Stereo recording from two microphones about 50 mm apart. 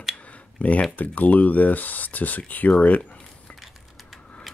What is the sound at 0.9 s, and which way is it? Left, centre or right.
Speech, left.